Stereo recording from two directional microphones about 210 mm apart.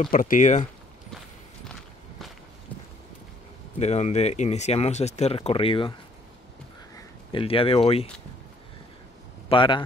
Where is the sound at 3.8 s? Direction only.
30° left (ahead or behind).